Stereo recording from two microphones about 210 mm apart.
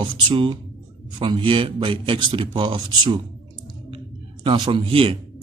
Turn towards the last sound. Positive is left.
turn(degrees=-25)  # may be behind; listen again after turning